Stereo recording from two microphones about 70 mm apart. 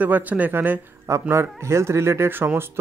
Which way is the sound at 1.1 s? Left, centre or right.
Right.